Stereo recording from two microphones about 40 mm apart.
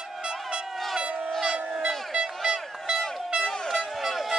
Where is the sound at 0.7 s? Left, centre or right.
Centre.